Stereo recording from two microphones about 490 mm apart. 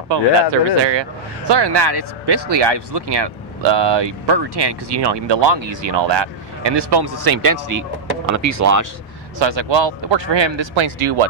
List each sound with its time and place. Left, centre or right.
0.1 s speech: right
9.4 s speech: right